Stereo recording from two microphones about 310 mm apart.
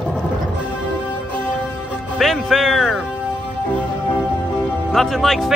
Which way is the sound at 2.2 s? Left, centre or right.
Centre.